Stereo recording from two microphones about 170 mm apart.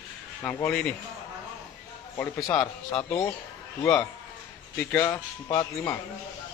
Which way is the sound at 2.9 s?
5° left (ahead or behind).